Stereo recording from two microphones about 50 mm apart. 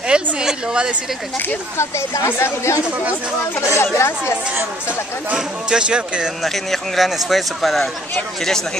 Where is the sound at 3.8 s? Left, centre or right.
Left.